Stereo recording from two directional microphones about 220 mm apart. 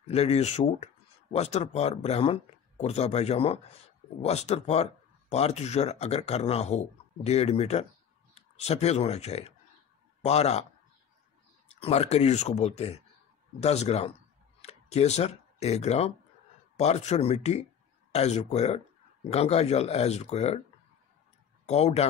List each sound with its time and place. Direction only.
0.0 s speech: 30° left (ahead or behind)
11.8 s speech: 30° left (ahead or behind)
21.6 s a man's voice: 30° left (ahead or behind)